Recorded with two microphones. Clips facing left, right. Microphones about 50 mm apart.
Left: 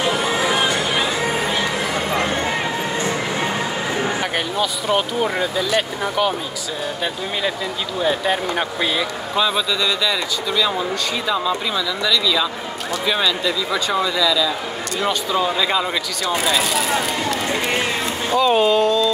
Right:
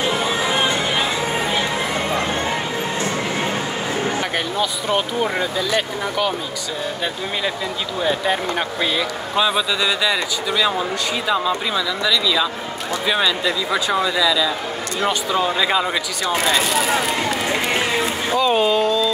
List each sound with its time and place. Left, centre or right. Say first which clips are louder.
0.5 s music: even; right
4.6 s speech: left 1 dB; centre
8.0 s speech: left 1 dB; centre
9.4 s speech: right 1 dB; centre
16.3 s speech: right 1 dB; centre